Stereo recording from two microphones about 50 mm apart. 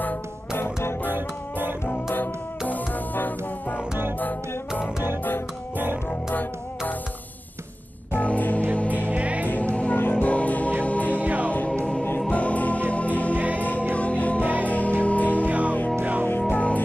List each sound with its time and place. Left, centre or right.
1.1 s music: right
2.7 s music: left
8.2 s music: left
9.1 s music: right
9.7 s music: left
9.9 s music: left
10.2 s music: left
11.1 s music: right
11.5 s music: left
13.3 s music: right
13.6 s music: left
15.4 s music: right
16.3 s music: left